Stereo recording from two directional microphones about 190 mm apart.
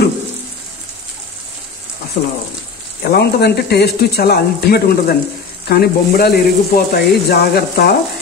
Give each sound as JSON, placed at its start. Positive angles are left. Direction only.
{"t": 2.2, "sound": "speech", "side_deg": 45}
{"t": 3.0, "sound": "speech", "side_deg": 55}